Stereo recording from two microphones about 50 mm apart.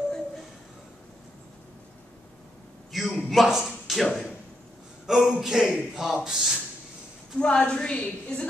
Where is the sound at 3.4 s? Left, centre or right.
Centre.